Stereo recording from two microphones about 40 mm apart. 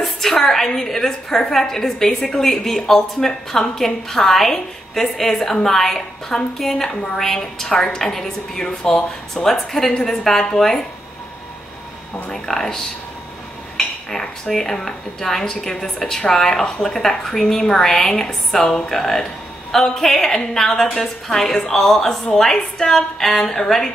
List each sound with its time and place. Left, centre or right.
0.0 s a woman's voice: centre
12.3 s a woman's voice: centre
14.1 s a woman's voice: centre